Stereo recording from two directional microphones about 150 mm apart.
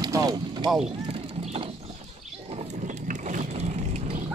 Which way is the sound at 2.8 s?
55° right (ahead or behind).